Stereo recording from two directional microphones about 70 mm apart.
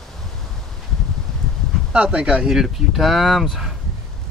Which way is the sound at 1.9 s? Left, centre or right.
Centre.